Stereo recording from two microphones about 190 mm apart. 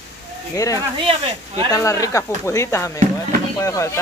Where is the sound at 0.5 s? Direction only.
15° left (ahead or behind).